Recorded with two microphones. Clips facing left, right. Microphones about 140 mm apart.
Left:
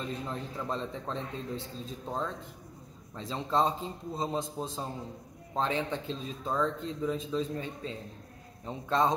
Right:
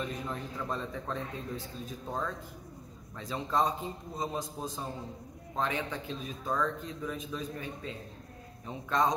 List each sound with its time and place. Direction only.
0.0 s a man's voice: 30° left (ahead or behind)